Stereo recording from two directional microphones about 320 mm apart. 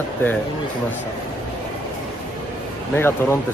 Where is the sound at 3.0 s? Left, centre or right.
Centre.